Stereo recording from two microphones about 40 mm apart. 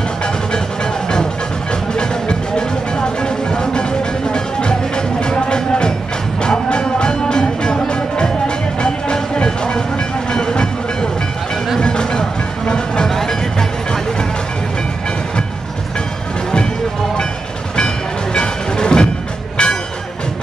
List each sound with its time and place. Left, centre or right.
2.0 s music: left
17.7 s music: left